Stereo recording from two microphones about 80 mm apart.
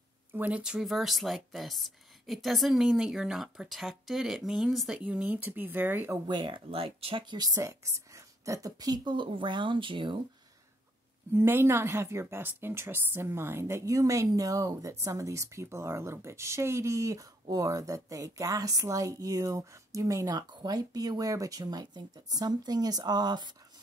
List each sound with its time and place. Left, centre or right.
0.3 s speech: centre
0.8 s a woman's voice: centre; by 6.1 s right
6.2 s speech: right
7.6 s speech: right
11.3 s a woman's voice: right